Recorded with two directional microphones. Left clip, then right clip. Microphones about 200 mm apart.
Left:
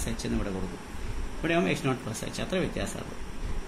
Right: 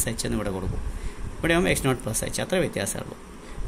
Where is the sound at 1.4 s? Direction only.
55° right (ahead or behind).